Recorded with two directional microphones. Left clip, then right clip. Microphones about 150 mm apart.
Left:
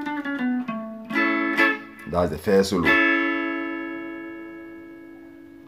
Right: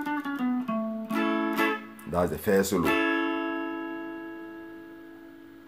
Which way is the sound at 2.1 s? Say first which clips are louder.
Left 4 dB; 5° right (ahead or behind).